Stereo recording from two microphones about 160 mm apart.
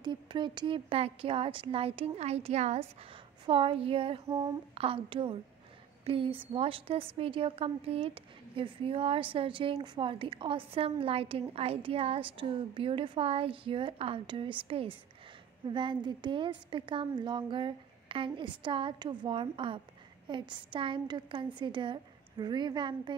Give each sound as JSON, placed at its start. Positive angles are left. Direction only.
{"t": 0.0, "sound": "a woman's voice", "side_deg": -30}